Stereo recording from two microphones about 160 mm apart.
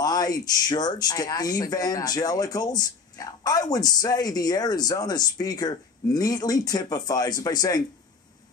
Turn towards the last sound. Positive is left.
turn(degrees=20)  # may be behind; listen again after turning